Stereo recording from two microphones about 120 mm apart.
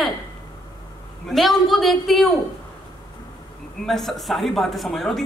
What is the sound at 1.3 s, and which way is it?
A woman's voice, centre (ahead or behind).